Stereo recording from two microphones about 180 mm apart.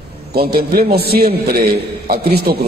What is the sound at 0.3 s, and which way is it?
A man's voice, 60° right (ahead or behind).